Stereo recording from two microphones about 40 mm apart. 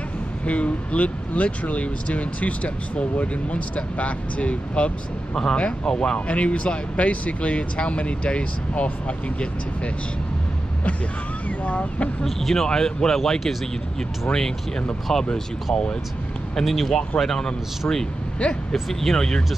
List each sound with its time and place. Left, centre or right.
0.5 s speech: left
11.4 s speech: left
12.4 s speech: centre
16.6 s speech: centre
18.9 s speech: centre